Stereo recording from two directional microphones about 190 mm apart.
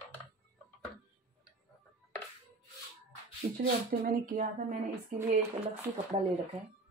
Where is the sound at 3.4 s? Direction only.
50° right (ahead or behind).